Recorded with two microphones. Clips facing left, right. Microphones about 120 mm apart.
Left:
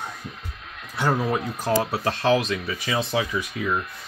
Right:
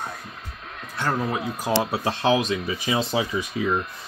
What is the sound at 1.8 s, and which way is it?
Speech, 20° right (ahead or behind).